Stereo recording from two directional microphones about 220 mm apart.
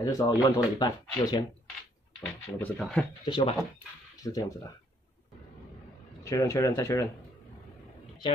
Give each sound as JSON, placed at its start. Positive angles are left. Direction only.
{"t": 0.0, "sound": "speech", "side_deg": 15}
{"t": 2.6, "sound": "speech", "side_deg": 5}
{"t": 3.3, "sound": "speech", "side_deg": 20}
{"t": 6.2, "sound": "speech", "side_deg": 15}